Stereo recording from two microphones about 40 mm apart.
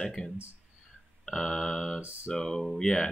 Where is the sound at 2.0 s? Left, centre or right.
Right.